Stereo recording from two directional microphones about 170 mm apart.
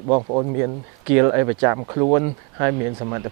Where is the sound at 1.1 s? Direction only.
15° right (ahead or behind).